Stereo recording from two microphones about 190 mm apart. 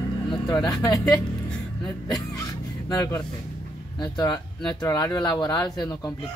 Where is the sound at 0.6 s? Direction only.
20° left (ahead or behind).